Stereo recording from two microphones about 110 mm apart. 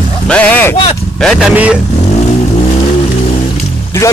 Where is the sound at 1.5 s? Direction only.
10° right (ahead or behind).